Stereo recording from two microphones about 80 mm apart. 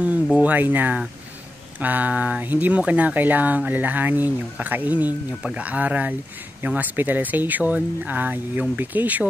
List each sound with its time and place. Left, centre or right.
0.4 s speech: right